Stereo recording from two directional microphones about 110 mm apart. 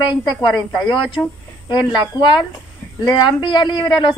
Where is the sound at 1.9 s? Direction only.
45° left (ahead or behind).